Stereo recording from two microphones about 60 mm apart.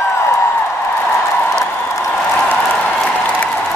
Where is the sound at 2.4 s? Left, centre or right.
Left.